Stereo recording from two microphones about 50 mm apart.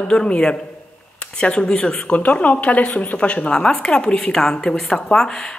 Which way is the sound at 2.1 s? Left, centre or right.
Left.